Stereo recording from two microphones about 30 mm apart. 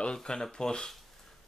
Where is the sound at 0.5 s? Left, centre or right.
Left.